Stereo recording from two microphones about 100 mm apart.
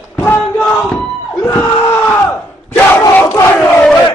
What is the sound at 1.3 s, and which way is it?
Crowd, 25° left (ahead or behind).